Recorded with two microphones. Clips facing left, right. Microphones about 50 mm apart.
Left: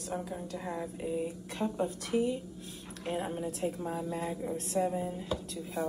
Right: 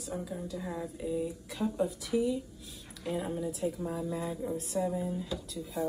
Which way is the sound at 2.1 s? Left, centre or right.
Left.